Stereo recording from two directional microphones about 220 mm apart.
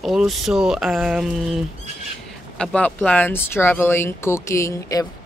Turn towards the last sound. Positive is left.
turn(degrees=15)  # may be behind; listen again after turning